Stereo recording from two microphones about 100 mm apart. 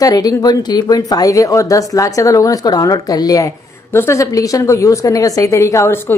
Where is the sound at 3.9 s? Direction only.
25° left (ahead or behind).